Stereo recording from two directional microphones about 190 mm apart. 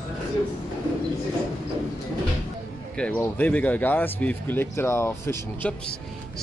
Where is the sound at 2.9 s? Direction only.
5° left (ahead or behind).